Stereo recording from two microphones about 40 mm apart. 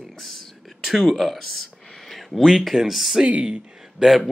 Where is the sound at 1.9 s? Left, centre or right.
Centre.